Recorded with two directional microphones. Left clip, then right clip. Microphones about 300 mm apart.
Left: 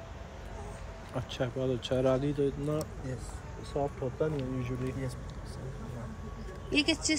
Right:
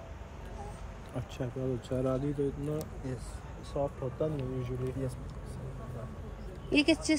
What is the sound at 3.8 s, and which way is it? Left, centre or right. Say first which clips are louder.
Speech: left 1 dB; left.